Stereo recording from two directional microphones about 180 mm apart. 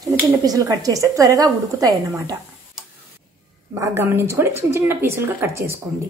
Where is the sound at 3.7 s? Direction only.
15° right (ahead or behind).